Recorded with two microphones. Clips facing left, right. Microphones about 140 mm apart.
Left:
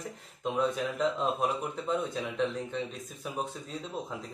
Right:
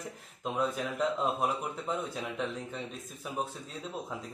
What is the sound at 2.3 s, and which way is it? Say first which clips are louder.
Speech: left 5 dB; 5° right (ahead or behind).